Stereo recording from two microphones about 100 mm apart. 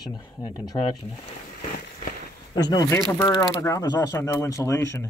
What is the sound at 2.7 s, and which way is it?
Speech, 40° left (ahead or behind).